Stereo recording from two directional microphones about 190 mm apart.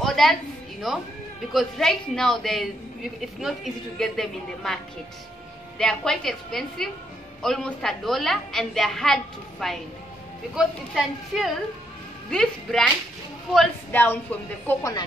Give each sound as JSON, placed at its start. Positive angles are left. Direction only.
{"t": 0.0, "sound": "a sound", "side_deg": 0}
{"t": 1.5, "sound": "a woman's voice", "side_deg": 0}
{"t": 5.8, "sound": "a woman's voice", "side_deg": 5}